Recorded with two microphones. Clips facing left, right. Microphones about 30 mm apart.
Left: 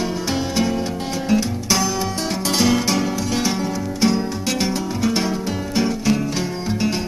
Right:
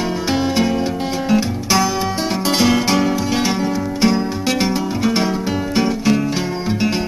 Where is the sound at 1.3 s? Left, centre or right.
Centre.